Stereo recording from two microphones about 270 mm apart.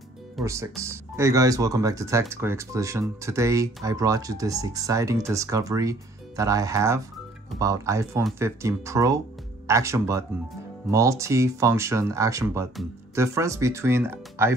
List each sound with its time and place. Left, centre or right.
0.4 s speech: centre
0.8 s speech: centre